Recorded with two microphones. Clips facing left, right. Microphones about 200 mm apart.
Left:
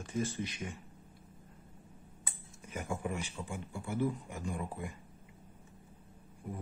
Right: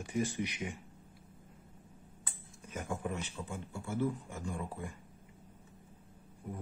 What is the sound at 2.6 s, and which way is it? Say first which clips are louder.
Speech: left 1 dB; 10° left (ahead or behind).